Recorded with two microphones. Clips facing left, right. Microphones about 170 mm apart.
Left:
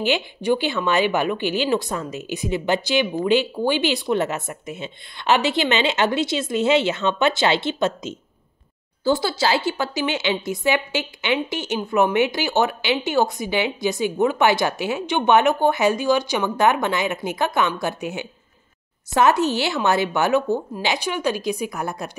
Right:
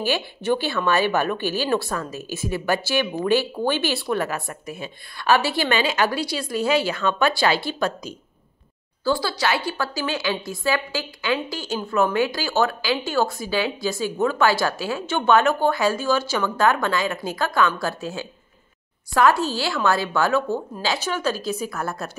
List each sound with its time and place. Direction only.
0.0 s a woman's voice: 15° left (ahead or behind)